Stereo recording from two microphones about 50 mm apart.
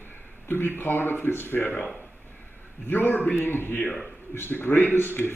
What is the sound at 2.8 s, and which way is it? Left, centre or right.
A man's voice, left.